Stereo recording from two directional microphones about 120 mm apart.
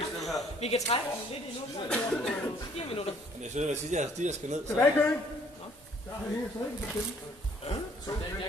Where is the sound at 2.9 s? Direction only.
55° left (ahead or behind).